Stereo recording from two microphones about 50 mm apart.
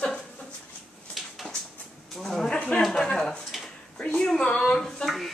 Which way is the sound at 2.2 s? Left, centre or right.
Centre.